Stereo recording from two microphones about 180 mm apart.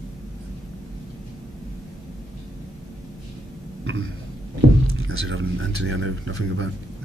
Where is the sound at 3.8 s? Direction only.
90° right.